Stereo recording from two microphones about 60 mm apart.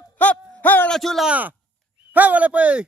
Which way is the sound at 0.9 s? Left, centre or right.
Centre.